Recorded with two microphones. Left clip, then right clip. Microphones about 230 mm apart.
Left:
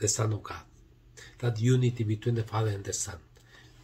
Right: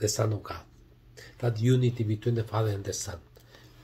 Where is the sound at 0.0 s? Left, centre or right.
Centre.